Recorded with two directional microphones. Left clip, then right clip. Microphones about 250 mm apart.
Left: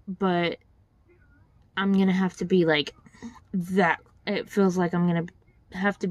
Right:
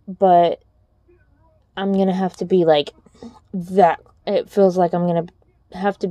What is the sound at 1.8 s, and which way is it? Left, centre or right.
A woman's voice, left.